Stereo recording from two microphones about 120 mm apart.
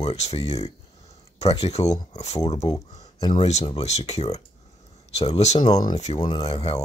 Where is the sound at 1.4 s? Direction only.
60° left (ahead or behind).